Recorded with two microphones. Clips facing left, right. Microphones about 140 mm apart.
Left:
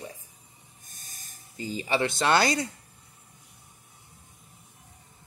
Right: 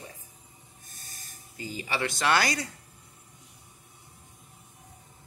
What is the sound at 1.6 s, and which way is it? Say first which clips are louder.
Speech: left 5 dB; 25° left (ahead or behind).